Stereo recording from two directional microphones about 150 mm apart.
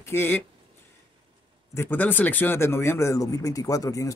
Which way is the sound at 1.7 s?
15° left (ahead or behind).